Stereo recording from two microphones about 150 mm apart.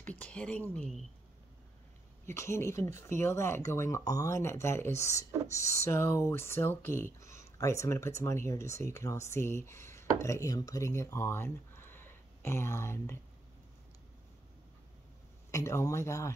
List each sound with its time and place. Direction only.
0.0 s speech: 10° left (ahead or behind)
2.2 s speech: 20° left (ahead or behind)
15.5 s speech: 20° left (ahead or behind)